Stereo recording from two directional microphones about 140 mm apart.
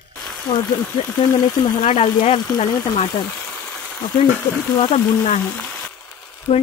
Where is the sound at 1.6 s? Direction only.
40° left (ahead or behind).